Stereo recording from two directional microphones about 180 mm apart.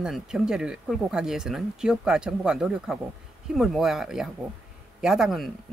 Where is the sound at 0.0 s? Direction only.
5° right (ahead or behind).